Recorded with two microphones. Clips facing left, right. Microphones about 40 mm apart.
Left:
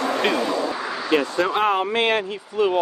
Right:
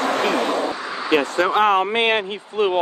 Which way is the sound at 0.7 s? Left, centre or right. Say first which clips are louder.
Even; centre.